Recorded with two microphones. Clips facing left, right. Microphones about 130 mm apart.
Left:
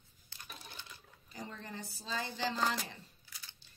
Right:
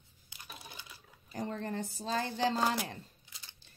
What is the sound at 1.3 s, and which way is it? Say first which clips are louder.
Speech: right 9 dB; 50° right (ahead or behind).